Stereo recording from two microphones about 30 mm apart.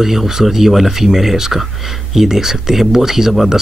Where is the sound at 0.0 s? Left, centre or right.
Centre.